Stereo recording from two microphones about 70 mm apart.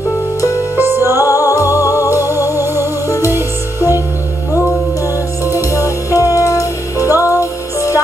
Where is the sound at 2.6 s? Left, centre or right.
Right.